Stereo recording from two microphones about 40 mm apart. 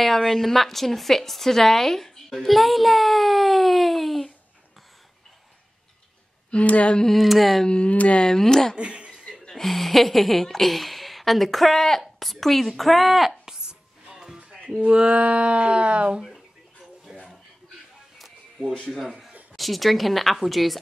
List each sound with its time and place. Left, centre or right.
0.0 s a woman's voice: centre
6.5 s a sound: left
7.1 s a woman's voice: centre
7.6 s speech: left
7.9 s a sound: left
8.2 s speech: centre
8.7 s a sound: right
9.5 s a woman's voice: centre
13.5 s music: centre
14.8 s speech: right
17.1 s a sound: centre
18.9 s a woman's voice: centre